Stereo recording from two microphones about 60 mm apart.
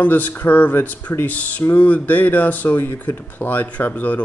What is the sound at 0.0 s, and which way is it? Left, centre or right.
Speech, left.